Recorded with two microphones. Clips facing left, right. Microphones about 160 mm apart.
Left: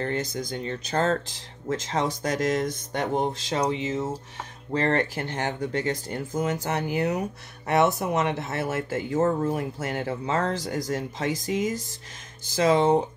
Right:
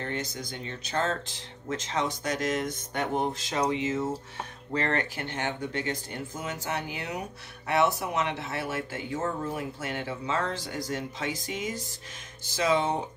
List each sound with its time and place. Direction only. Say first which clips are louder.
0.0 s speech: left 6 dB; 45° left (ahead or behind); by 4.2 s 20° left (ahead or behind)
4.7 s speech: left 5 dB; 35° left (ahead or behind)